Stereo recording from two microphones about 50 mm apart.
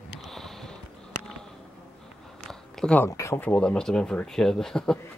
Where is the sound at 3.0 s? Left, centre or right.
Left.